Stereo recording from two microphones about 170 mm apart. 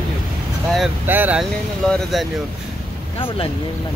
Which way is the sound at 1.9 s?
Centre (ahead or behind).